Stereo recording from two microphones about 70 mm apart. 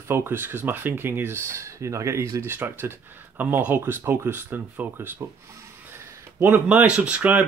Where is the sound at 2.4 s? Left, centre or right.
Right.